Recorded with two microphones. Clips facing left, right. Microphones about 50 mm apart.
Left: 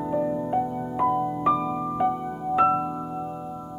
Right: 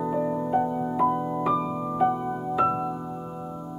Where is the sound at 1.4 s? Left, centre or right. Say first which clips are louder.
Left 2 dB; centre.